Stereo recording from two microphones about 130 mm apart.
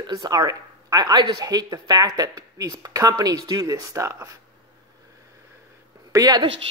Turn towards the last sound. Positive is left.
turn(degrees=-30)  # may be behind; listen again after turning